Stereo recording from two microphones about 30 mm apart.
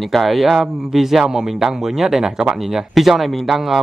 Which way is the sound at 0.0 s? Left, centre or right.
Centre.